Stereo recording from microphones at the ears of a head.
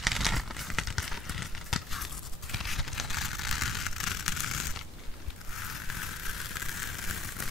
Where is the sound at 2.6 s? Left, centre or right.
Left.